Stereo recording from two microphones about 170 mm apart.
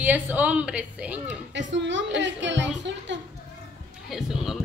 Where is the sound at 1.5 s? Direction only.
90° right.